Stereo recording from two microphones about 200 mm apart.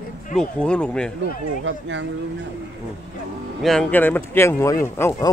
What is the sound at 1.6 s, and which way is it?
Speech, 70° right (ahead or behind).